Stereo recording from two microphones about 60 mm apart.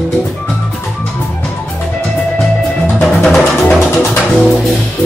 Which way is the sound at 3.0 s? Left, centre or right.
Centre.